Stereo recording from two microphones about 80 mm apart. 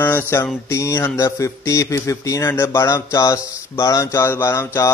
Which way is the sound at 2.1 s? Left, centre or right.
Left.